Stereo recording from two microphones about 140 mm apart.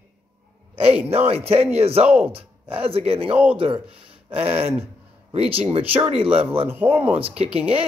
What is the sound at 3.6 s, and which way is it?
A man's voice, 40° right (ahead or behind).